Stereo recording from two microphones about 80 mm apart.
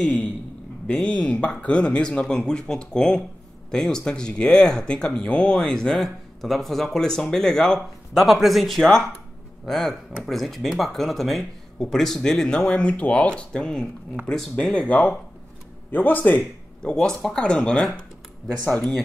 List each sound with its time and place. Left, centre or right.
0.8 s speech: centre
16.8 s speech: centre